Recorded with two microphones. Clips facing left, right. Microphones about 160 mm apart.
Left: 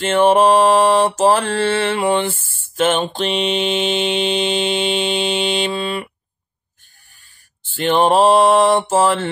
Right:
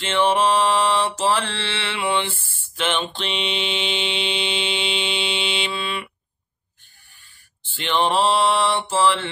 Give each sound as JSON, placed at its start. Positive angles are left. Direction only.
{"t": 0.0, "sound": "mantra", "side_deg": 45}
{"t": 7.6, "sound": "mantra", "side_deg": 45}